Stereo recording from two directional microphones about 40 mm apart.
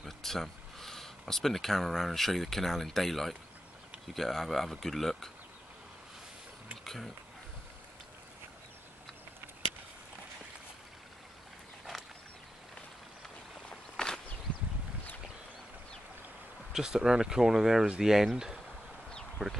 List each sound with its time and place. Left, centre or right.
0.0 s speech: centre
13.7 s a sound: left
16.7 s speech: centre
19.4 s speech: right